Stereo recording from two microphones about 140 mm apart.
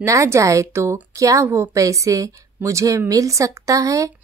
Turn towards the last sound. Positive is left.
turn(degrees=-25)  # may be behind; listen again after turning